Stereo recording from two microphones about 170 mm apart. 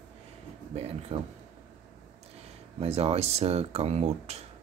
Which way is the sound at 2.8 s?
35° right (ahead or behind).